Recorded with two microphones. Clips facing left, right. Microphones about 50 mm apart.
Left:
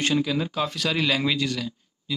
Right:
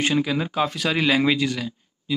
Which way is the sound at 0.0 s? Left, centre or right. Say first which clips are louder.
Right 2 dB; centre.